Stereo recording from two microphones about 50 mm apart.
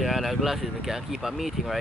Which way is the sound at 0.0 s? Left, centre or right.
Centre.